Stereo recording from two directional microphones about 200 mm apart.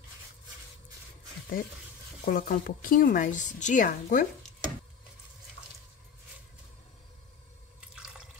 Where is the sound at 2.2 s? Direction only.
45° left (ahead or behind).